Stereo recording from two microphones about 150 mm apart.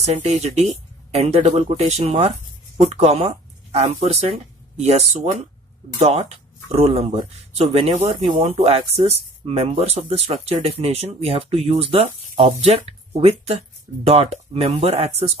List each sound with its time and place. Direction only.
0.0 s speech: 45° right (ahead or behind)
8.4 s speech: 40° right (ahead or behind)